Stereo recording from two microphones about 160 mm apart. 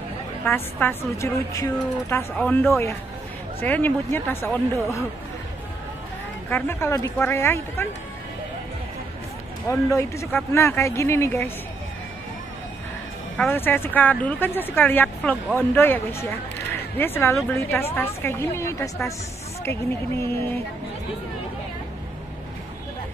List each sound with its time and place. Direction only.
0.5 s speech: 15° left (ahead or behind)
6.5 s speech: 15° left (ahead or behind)
9.7 s speech: 15° left (ahead or behind)
13.4 s speech: 10° left (ahead or behind)